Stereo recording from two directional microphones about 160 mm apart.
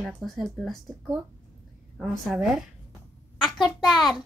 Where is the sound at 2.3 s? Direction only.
Centre (ahead or behind).